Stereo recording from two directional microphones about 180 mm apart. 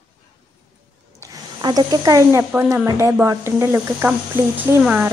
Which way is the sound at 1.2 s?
20° right (ahead or behind).